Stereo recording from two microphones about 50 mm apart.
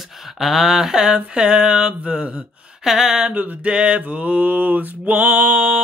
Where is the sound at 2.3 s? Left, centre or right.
Centre.